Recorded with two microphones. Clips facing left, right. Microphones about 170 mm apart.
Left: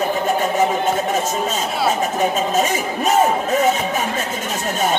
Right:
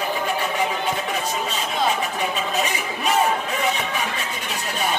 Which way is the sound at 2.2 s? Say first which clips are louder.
Left 6 dB; 45° left (ahead or behind).